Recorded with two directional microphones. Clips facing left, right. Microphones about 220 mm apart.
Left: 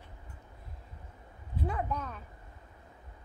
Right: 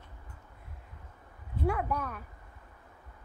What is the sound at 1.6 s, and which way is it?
Speech, 10° right (ahead or behind).